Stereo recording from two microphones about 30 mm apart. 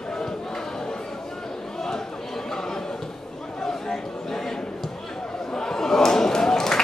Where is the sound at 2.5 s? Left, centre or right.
Centre.